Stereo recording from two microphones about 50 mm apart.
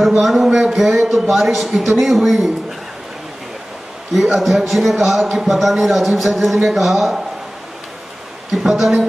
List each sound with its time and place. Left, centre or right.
0.2 s a man's voice: centre
4.1 s a man's voice: centre
8.5 s a man's voice: centre